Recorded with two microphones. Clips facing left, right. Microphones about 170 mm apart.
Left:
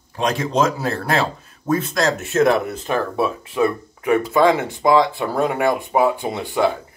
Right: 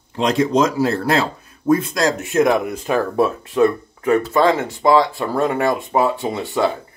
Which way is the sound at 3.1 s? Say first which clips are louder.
Right 4 dB; 10° left (ahead or behind).